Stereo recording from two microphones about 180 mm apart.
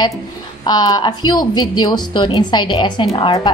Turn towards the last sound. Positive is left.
turn(degrees=25)  # may be behind; listen again after turning